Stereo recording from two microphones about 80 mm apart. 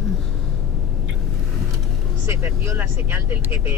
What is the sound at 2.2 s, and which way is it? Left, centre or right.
Speech, right.